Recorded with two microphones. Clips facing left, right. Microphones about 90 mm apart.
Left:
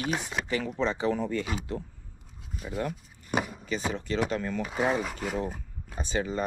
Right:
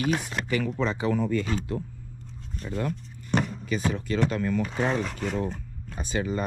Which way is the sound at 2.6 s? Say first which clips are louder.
Right 2 dB; 5° left (ahead or behind).